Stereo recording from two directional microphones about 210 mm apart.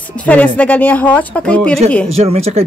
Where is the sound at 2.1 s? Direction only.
30° right (ahead or behind).